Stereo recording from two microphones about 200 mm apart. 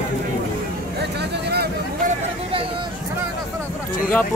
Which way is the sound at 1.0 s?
55° right (ahead or behind).